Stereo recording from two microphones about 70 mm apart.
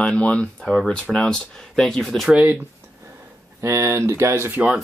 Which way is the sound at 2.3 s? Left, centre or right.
Centre.